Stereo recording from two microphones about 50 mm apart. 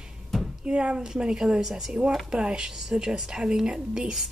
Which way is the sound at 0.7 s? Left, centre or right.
Centre.